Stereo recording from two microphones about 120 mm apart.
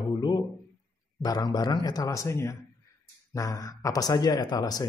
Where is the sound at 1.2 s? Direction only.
35° left (ahead or behind).